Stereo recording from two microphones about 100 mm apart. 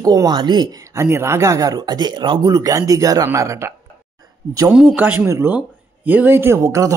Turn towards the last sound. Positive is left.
turn(degrees=-30)  # may be behind; listen again after turning